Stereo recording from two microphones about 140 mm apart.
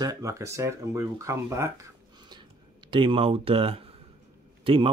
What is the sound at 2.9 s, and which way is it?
A man's voice, 40° right (ahead or behind).